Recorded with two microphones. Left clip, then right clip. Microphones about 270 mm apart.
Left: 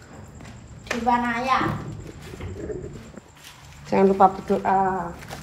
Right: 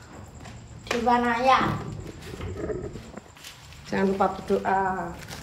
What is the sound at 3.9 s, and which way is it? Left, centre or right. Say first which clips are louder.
Speech: left 7 dB; centre.